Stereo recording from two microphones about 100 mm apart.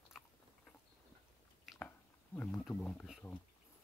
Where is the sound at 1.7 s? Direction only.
20° left (ahead or behind).